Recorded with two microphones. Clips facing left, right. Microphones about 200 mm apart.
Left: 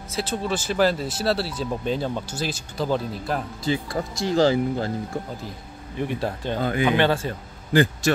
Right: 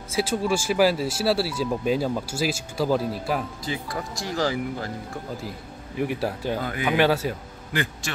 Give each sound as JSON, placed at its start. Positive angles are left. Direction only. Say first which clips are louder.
{"t": 0.1, "sound": "speech", "louder": "right 3 dB", "side_deg": -10}
{"t": 3.6, "sound": "speech", "louder": "left 5 dB", "side_deg": 25}
{"t": 5.9, "sound": "speech", "louder": "right 1 dB", "side_deg": -10}
{"t": 6.6, "sound": "speech", "louder": "left 6 dB", "side_deg": 25}
{"t": 6.9, "sound": "speech", "louder": "right 3 dB", "side_deg": -5}
{"t": 7.7, "sound": "a man's voice", "louder": "left 9 dB", "side_deg": 35}